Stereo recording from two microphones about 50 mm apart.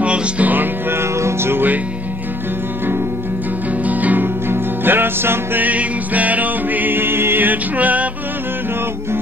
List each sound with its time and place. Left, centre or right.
0.0 s music: right
1.2 s music: right
3.8 s music: right
4.5 s music: right
5.6 s music: right